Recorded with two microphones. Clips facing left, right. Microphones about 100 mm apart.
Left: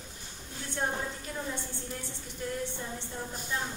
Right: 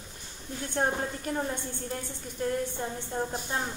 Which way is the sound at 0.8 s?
50° right (ahead or behind).